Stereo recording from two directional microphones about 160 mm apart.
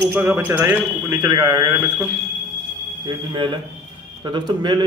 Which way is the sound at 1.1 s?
25° right (ahead or behind).